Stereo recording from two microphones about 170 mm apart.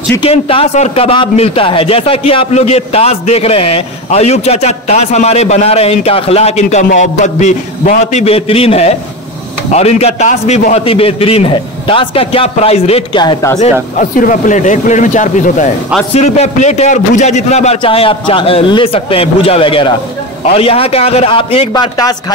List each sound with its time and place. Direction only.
0.2 s a man's voice: 35° left (ahead or behind)
13.9 s a man's voice: 50° left (ahead or behind); by 21.8 s 35° left (ahead or behind)